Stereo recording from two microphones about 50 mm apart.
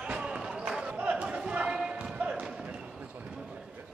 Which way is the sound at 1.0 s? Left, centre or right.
Right.